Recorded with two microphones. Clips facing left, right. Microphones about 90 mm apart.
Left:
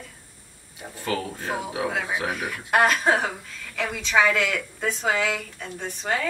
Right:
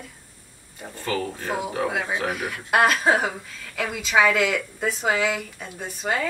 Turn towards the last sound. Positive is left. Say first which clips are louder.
# right 1 dB
turn(degrees=-5)  # may be behind; listen again after turning